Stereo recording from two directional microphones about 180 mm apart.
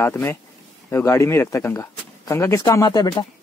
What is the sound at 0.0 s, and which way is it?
Speech, 15° left (ahead or behind).